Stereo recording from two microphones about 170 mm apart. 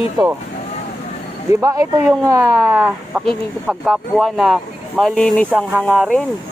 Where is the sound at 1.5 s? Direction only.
20° right (ahead or behind).